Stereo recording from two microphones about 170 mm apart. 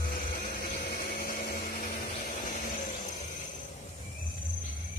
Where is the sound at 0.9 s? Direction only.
60° left (ahead or behind).